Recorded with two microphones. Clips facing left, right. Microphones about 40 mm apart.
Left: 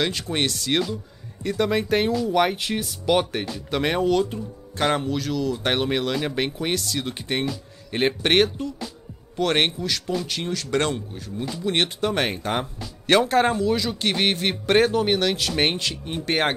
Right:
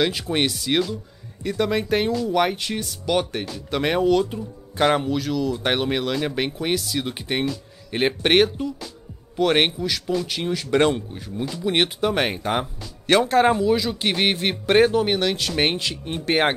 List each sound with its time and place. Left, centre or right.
0.0 s speech: centre